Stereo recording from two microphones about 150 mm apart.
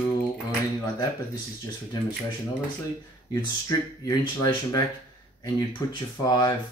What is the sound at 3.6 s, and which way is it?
Speech, 25° left (ahead or behind).